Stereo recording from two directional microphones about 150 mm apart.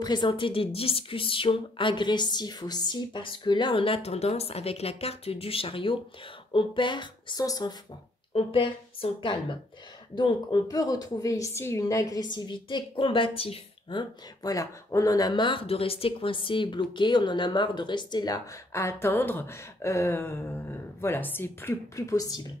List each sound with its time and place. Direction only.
0.0 s speech: 30° left (ahead or behind)
8.3 s a woman's voice: 40° left (ahead or behind); by 22.4 s 25° left (ahead or behind)